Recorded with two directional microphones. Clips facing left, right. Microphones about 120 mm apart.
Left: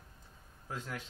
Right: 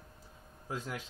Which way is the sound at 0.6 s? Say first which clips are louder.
Right 2 dB; 15° right (ahead or behind).